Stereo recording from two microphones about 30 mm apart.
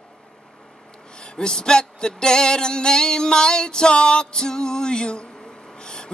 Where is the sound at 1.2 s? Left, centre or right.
Left.